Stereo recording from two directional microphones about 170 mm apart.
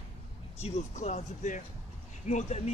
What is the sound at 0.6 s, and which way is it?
Speech, 40° left (ahead or behind).